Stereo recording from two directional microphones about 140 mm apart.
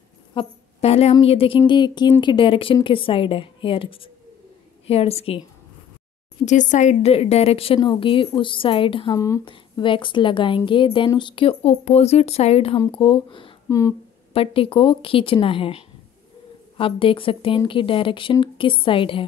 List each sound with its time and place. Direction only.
0.3 s a sound: 40° left (ahead or behind)
1.2 s speech: 45° left (ahead or behind)
1.7 s a woman's voice: 30° left (ahead or behind)
6.4 s a woman's voice: 60° left (ahead or behind); by 9.1 s 40° left (ahead or behind)
9.1 s speech: 25° left (ahead or behind)
9.4 s a woman's voice: 35° left (ahead or behind)
12.9 s a woman's voice: 35° left (ahead or behind)
13.7 s speech: 25° left (ahead or behind)
14.3 s a woman's voice: 40° left (ahead or behind)